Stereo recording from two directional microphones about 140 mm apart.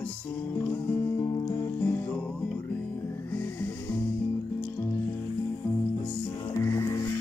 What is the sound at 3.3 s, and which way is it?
Music, 20° left (ahead or behind).